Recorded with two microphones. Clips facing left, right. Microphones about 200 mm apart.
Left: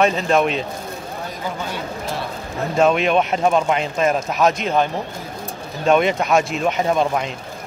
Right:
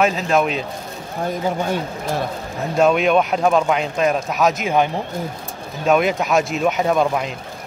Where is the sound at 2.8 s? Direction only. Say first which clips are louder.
Right 1 dB; centre (ahead or behind).